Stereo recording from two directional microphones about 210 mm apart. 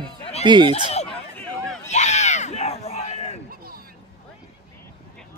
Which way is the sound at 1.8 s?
35° left (ahead or behind).